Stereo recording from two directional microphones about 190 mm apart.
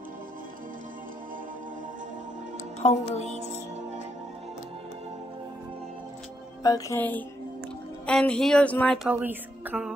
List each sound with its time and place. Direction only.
2.8 s speech: 35° left (ahead or behind)
6.6 s a woman's voice: 15° left (ahead or behind); by 9.9 s 5° right (ahead or behind)